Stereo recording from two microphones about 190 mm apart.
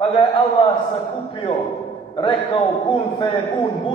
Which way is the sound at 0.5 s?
35° left (ahead or behind).